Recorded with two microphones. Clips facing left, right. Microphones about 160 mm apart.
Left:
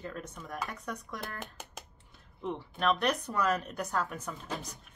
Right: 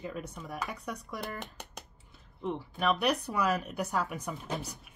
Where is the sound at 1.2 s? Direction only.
Centre (ahead or behind).